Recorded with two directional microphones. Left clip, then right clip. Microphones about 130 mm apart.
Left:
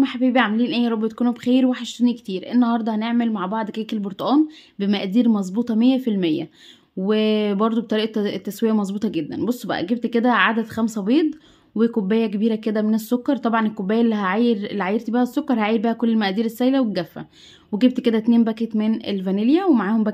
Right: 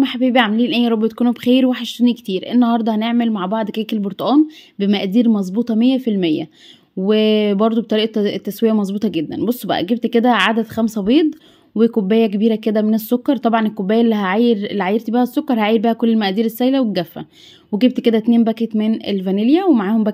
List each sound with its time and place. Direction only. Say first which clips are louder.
0.0 s speech: right 4 dB; 35° right (ahead or behind)